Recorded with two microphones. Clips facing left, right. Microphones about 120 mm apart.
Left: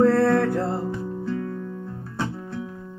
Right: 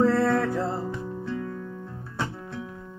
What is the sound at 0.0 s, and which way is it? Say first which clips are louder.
Music: left 4 dB; 65° left (ahead or behind).